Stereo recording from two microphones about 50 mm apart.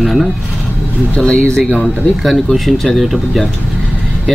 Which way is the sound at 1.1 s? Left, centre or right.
Left.